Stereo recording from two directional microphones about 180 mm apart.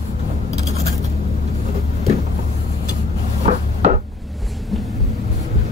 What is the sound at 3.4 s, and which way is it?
Wood, 40° right (ahead or behind).